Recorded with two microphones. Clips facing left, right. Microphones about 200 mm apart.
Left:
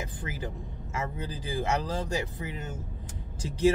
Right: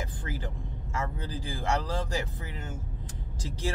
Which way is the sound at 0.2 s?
15° left (ahead or behind).